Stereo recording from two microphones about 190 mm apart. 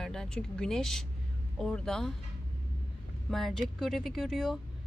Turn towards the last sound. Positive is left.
turn(degrees=0)  # may be behind; listen again after turning